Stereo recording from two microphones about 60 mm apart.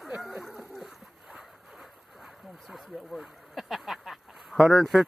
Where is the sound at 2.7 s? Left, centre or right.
Centre.